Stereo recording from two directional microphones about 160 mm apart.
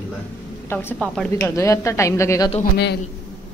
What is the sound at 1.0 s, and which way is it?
Speech, 5° left (ahead or behind).